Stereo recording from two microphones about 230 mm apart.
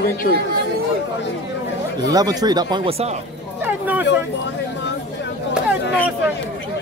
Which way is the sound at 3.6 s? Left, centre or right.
Centre.